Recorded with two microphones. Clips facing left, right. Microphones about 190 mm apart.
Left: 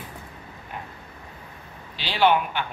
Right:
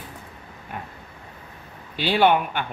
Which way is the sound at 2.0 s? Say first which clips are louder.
Right 2 dB; 55° right (ahead or behind).